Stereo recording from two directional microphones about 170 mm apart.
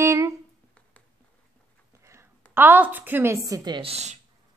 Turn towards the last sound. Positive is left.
turn(degrees=-40)  # may be behind; listen again after turning